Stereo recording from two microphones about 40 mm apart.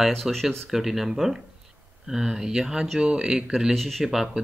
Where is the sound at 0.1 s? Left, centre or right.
Centre.